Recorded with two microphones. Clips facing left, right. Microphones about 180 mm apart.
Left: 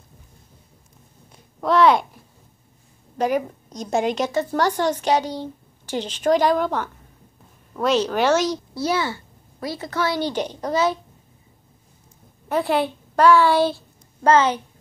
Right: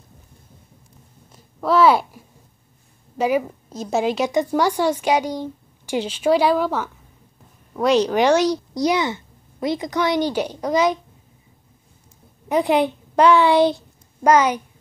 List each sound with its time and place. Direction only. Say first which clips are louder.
1.3 s a sound: right 1 dB; 5° right (ahead or behind)
3.2 s a woman's voice: right 2 dB; 5° right (ahead or behind)
4.3 s speech: right 2 dB; 15° right (ahead or behind)
12.4 s a woman's voice: right 3 dB; 15° right (ahead or behind)